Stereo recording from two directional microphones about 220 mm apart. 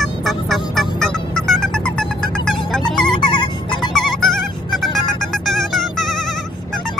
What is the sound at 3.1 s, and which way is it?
Music, 20° left (ahead or behind).